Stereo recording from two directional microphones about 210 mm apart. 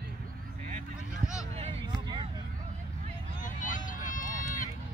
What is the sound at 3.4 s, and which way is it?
Vehicle, 40° left (ahead or behind).